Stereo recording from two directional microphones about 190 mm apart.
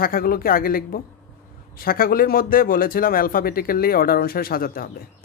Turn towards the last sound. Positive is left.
turn(degrees=50)  # may be behind; listen again after turning